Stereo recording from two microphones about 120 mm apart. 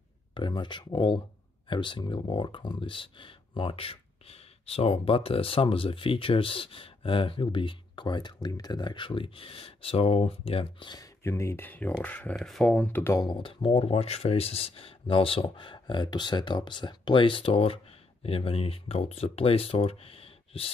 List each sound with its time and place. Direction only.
0.3 s speech: 40° left (ahead or behind)
11.0 s speech: 25° left (ahead or behind)
12.4 s speech: centre (ahead or behind)
12.6 s speech: 15° left (ahead or behind)
13.2 s speech: 45° left (ahead or behind)